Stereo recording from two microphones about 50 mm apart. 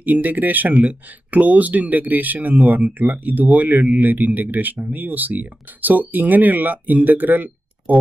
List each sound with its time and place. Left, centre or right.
0.0 s speech: right